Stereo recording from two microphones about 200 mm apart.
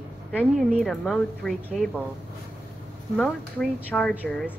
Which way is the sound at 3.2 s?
5° left (ahead or behind).